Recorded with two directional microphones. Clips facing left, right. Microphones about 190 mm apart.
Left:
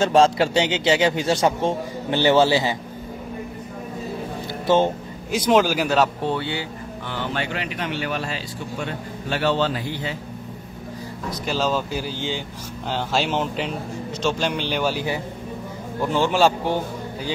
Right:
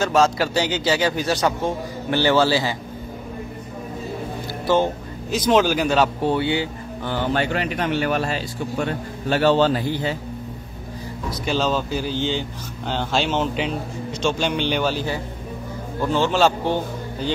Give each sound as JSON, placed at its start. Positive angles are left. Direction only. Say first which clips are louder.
{"t": 0.0, "sound": "a man's voice", "louder": "left 2 dB", "side_deg": 30}
{"t": 5.3, "sound": "a man's voice", "louder": "even", "side_deg": 10}
{"t": 6.2, "sound": "speech", "louder": "right 4 dB", "side_deg": -15}
{"t": 7.1, "sound": "a man's voice", "louder": "right 6 dB", "side_deg": -45}
{"t": 11.4, "sound": "a man's voice", "louder": "right 1 dB", "side_deg": 5}